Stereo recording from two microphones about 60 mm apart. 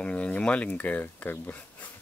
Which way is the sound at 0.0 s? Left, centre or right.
Centre.